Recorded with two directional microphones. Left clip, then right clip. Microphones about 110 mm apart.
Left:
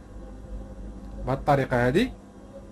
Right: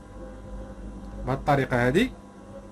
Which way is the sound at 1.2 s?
25° left (ahead or behind).